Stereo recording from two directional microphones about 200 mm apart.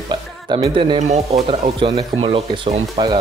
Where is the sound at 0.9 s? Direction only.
35° right (ahead or behind).